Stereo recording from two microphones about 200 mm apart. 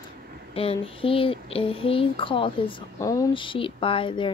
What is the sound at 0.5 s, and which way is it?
Speech, 25° left (ahead or behind).